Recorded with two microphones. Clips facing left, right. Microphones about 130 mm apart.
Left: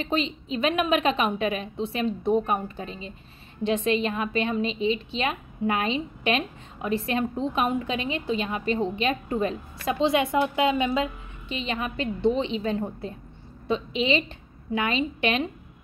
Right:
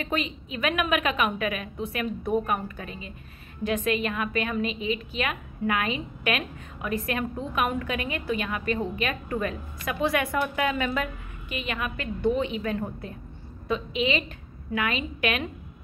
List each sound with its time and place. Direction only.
0.0 s a woman's voice: 25° left (ahead or behind)